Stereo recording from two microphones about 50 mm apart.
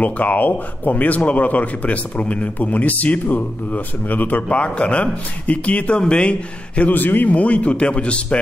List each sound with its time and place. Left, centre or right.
0.0 s speech: left
4.5 s a man's voice: left
6.9 s a man's voice: left